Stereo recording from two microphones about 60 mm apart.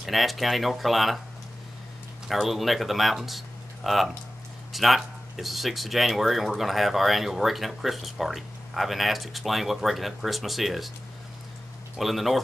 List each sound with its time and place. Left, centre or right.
0.0 s speech: centre
2.2 s speech: centre
12.0 s speech: centre